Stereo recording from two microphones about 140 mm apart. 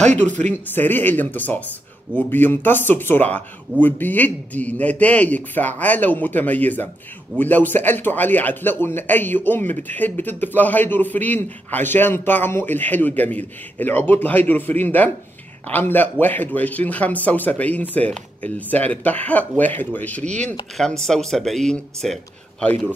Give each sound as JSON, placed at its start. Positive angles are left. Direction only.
{"t": 0.0, "sound": "speech", "side_deg": -55}
{"t": 0.7, "sound": "speech", "side_deg": 15}